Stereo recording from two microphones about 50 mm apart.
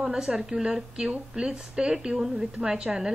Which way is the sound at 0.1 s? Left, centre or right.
Centre.